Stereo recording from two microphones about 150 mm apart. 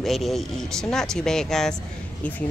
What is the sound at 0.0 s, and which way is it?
Speech, centre (ahead or behind).